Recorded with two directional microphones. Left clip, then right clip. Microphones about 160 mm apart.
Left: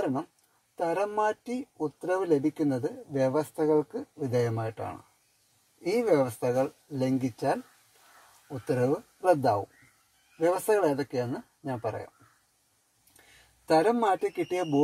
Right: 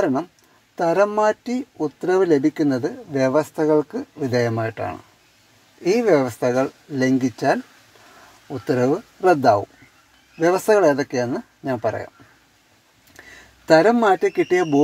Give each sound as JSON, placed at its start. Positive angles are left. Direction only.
{"t": 0.7, "sound": "speech", "side_deg": -20}
{"t": 5.9, "sound": "speech", "side_deg": -25}
{"t": 8.6, "sound": "speech", "side_deg": -20}
{"t": 13.7, "sound": "speech", "side_deg": -25}